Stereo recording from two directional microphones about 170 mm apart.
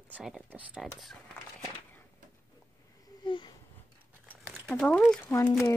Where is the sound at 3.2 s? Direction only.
30° left (ahead or behind).